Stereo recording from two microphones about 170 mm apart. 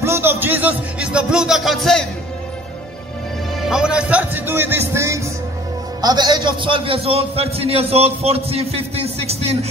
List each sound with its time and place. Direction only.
0.0 s speech: 15° right (ahead or behind); by 2.0 s centre (ahead or behind)
3.6 s a man's voice: 5° right (ahead or behind); by 9.7 s 35° right (ahead or behind)